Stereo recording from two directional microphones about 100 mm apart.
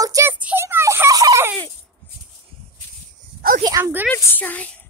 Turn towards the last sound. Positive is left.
turn(degrees=15)  # may be behind; listen again after turning